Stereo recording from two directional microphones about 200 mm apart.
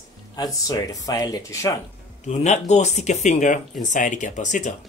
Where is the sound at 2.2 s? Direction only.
35° left (ahead or behind).